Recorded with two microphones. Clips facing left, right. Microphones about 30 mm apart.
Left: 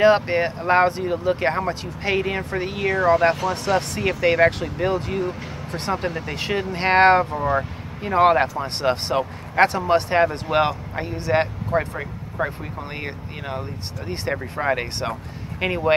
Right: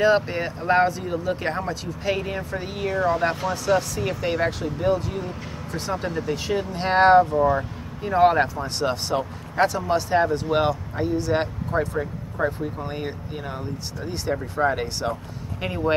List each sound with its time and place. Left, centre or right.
0.0 s speech: left
0.6 s speech: left
0.8 s speech: left
2.1 s speech: left
3.0 s speech: left
4.4 s speech: left
6.8 s speech: left
10.4 s speech: left
10.7 s speech: left
11.8 s speech: left
12.4 s speech: left
14.1 s speech: left
15.6 s speech: left